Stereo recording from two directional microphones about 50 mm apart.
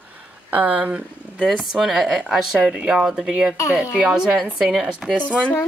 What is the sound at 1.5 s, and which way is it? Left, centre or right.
Speech, centre.